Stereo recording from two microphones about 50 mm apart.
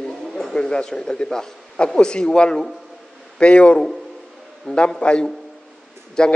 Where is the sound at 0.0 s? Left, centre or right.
Centre.